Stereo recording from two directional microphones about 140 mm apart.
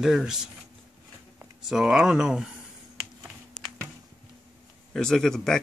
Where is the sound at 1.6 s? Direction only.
5° right (ahead or behind).